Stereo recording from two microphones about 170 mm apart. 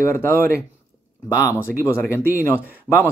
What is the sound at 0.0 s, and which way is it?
Speech, 15° left (ahead or behind).